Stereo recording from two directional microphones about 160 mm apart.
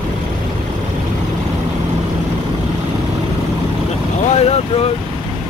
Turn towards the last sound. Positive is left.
turn(degrees=40)  # may be behind; listen again after turning